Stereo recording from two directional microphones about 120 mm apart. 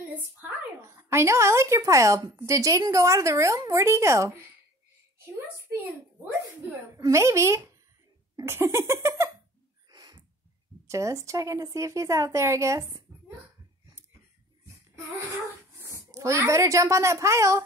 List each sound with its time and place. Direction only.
0.8 s a woman's voice: 25° right (ahead or behind)
7.0 s a woman's voice: 25° right (ahead or behind)
9.8 s a sound: 35° right (ahead or behind)
10.9 s a woman's voice: 25° right (ahead or behind)
15.8 s a sound: 25° right (ahead or behind)
16.4 s a woman's voice: 25° right (ahead or behind)